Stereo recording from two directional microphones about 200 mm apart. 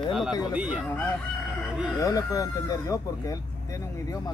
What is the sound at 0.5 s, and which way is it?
Speech, 5° right (ahead or behind).